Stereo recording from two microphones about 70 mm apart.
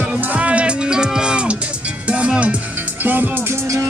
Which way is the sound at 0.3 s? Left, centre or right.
Centre.